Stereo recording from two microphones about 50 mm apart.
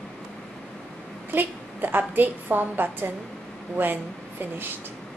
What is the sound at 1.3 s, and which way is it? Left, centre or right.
A woman's voice, right.